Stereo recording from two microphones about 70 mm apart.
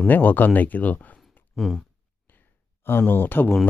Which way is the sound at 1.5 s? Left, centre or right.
Centre.